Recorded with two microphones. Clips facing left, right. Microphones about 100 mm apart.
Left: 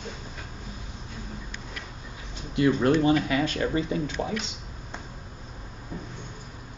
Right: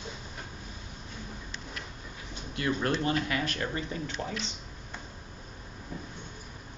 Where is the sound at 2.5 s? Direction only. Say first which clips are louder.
Left 8 dB; 20° left (ahead or behind).